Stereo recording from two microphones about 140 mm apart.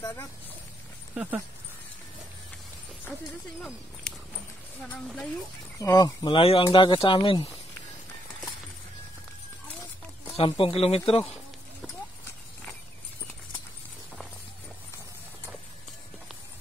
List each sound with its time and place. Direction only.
0.0 s speech: 20° left (ahead or behind)
1.1 s speech: 10° right (ahead or behind)
4.1 s a sound: 5° left (ahead or behind)
4.8 s speech: 5° left (ahead or behind)
5.8 s speech: 25° left (ahead or behind)
10.3 s speech: 40° left (ahead or behind)